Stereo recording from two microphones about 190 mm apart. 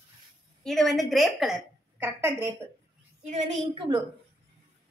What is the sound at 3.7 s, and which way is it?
Speech, 25° right (ahead or behind).